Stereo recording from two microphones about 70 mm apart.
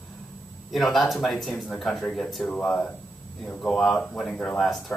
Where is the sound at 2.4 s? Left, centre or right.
Centre.